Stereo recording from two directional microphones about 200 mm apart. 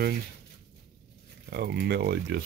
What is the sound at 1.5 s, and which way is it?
Speech, 55° right (ahead or behind).